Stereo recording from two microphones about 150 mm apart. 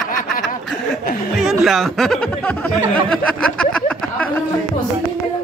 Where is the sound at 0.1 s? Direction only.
65° left (ahead or behind).